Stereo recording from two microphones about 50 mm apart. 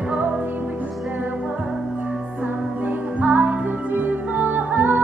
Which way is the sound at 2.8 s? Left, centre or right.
Right.